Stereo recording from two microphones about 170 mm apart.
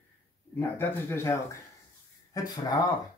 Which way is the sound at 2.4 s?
20° left (ahead or behind).